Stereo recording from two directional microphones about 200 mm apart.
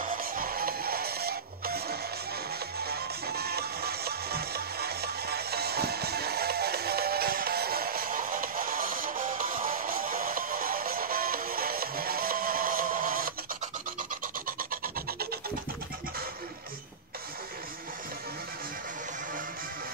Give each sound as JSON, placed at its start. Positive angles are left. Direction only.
{"t": 0.0, "sound": "music", "side_deg": -45}
{"t": 14.6, "sound": "rub", "side_deg": -45}